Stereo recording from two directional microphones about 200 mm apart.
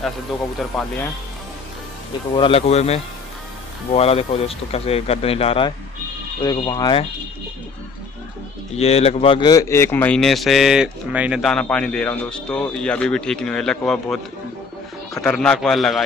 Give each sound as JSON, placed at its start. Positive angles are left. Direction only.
{"t": 0.7, "sound": "speech", "side_deg": 0}
{"t": 2.3, "sound": "speech", "side_deg": 25}
{"t": 8.7, "sound": "speech", "side_deg": 30}
{"t": 15.2, "sound": "speech", "side_deg": 5}